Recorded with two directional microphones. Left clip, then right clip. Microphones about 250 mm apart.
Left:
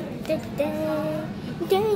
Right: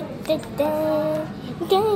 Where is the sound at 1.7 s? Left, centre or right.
Centre.